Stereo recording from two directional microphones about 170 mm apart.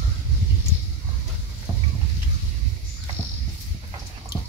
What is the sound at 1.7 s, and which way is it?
Boat, 20° right (ahead or behind).